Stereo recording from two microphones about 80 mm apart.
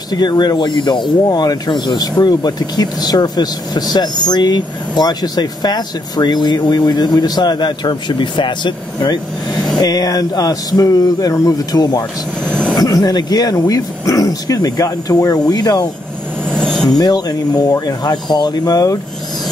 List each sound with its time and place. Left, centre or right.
0.1 s speech: left
16.5 s vehicle: centre
17.0 s speech: left